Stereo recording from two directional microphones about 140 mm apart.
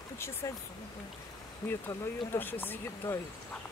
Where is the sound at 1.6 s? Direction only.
15° left (ahead or behind).